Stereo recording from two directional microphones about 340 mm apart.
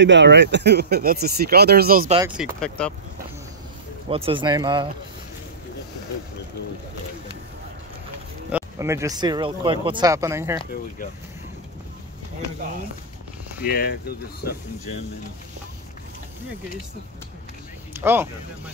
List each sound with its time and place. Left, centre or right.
0.0 s speech: right
2.1 s speech: centre
4.1 s speech: centre
8.5 s speech: centre
13.7 s speech: left
17.9 s speech: centre